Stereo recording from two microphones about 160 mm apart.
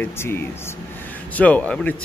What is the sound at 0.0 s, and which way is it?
Speech, 15° left (ahead or behind).